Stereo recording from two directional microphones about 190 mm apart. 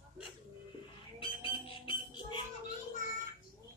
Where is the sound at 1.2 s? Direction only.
30° left (ahead or behind).